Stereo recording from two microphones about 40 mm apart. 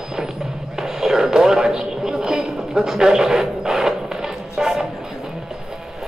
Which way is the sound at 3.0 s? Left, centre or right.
Centre.